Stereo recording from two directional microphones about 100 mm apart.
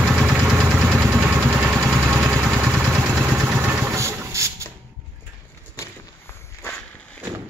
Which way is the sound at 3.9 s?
30° right (ahead or behind).